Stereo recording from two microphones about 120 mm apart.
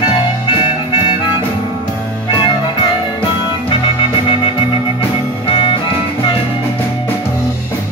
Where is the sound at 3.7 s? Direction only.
45° left (ahead or behind).